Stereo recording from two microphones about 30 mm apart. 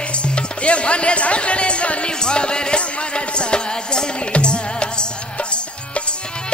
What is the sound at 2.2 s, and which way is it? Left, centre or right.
Music, left.